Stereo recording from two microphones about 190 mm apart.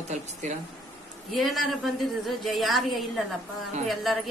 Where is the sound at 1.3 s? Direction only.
Centre (ahead or behind).